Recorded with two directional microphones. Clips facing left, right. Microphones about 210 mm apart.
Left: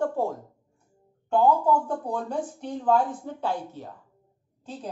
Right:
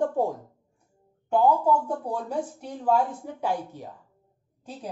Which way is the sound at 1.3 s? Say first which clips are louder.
Even; 10° right (ahead or behind).